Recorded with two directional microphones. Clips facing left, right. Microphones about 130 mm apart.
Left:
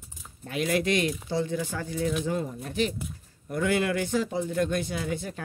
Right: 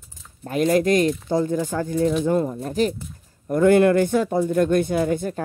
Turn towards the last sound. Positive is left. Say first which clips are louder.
# right 10 dB
turn(degrees=-50)  # may be behind; listen again after turning